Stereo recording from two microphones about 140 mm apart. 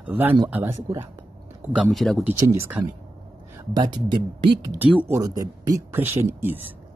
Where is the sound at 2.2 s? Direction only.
15° right (ahead or behind).